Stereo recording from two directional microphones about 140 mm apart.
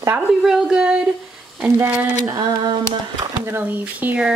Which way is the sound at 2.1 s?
30° right (ahead or behind).